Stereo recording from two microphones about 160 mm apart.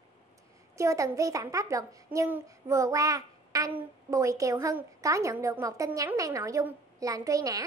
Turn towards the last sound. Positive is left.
turn(degrees=-20)  # may be behind; listen again after turning